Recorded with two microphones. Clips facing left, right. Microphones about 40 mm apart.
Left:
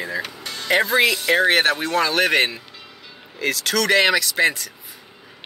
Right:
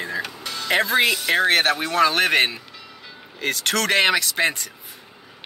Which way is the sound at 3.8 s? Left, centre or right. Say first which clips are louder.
Left 2 dB; centre.